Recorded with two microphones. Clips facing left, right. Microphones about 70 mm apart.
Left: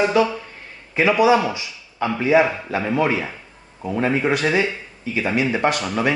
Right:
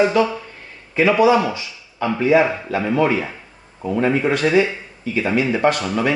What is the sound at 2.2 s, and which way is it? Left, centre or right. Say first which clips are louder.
A man's voice: right 1 dB; centre.